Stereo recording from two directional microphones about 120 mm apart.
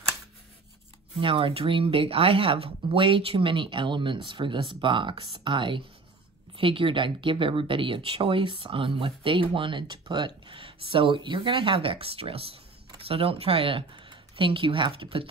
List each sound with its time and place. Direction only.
1.2 s speech: 45° right (ahead or behind)